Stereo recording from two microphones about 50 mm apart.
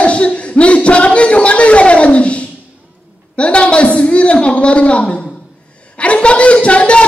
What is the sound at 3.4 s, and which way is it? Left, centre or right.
A man's voice, left.